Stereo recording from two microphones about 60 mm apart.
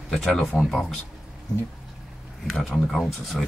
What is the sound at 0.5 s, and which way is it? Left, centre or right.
Speech, left.